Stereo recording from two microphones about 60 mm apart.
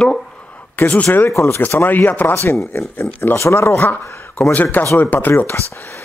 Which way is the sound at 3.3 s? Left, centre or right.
Left.